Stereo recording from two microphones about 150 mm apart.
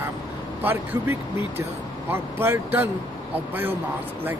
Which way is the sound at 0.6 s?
15° right (ahead or behind).